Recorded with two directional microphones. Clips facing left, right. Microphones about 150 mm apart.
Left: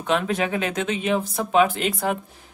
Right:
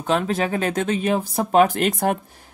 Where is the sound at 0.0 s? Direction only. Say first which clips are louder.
Right 1 dB; 35° right (ahead or behind).